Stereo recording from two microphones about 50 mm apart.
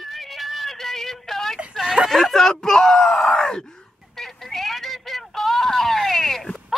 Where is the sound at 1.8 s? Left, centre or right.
Centre.